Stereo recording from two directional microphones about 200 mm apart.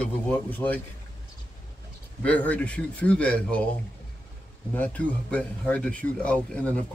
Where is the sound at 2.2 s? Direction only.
5° left (ahead or behind).